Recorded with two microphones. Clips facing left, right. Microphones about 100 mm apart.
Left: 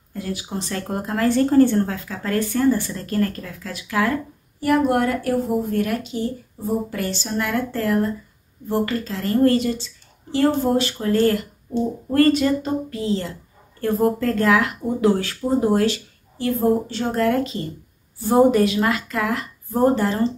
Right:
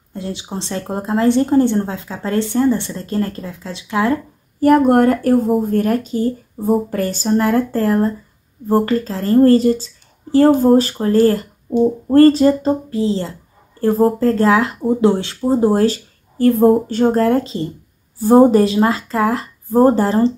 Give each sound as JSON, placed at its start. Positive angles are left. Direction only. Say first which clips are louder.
{"t": 0.1, "sound": "speech", "louder": "right 2 dB", "side_deg": -25}
{"t": 4.6, "sound": "speech", "louder": "right 7 dB", "side_deg": -45}